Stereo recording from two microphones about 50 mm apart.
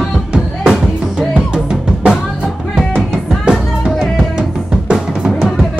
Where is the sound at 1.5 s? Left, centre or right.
Centre.